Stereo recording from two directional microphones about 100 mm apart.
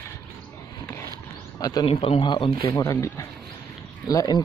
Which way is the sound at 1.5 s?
40° left (ahead or behind).